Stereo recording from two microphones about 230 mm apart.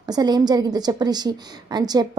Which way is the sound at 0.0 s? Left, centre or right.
Centre.